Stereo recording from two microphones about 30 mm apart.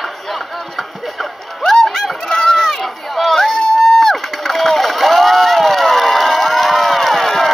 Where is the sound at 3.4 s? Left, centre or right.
Centre.